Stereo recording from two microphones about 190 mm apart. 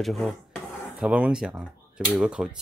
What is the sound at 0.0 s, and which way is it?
Speech, centre (ahead or behind).